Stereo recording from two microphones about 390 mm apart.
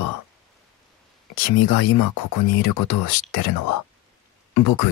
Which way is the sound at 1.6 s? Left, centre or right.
Left.